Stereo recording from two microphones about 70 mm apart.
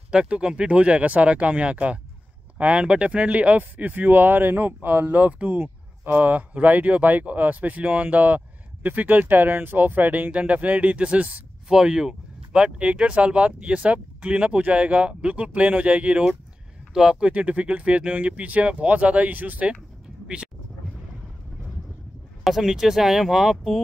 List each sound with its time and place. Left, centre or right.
0.1 s speech: centre
17.3 s speech: centre
22.4 s speech: centre